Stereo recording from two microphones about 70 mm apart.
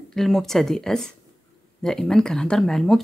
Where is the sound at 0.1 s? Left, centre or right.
Centre.